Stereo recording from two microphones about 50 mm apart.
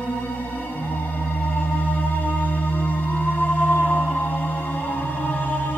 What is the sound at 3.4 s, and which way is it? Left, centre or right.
Music, left.